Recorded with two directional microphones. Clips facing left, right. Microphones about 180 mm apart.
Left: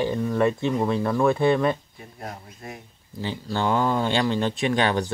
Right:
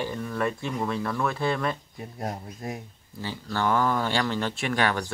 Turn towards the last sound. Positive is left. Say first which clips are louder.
# left 4 dB
turn(degrees=20)  # may be behind; listen again after turning